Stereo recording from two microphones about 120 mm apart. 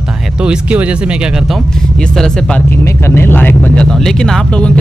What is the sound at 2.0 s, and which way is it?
Speech, 5° left (ahead or behind).